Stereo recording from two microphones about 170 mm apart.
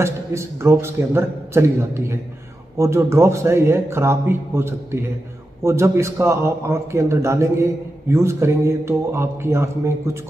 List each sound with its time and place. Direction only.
0.0 s a man's voice: 15° right (ahead or behind)